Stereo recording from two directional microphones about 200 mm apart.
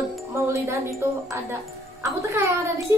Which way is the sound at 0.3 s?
15° right (ahead or behind).